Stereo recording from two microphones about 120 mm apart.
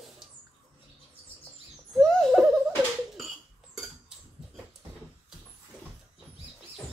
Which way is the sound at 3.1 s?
Centre (ahead or behind).